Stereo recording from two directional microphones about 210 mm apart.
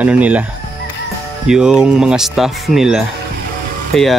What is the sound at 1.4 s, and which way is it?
Speech, 5° right (ahead or behind).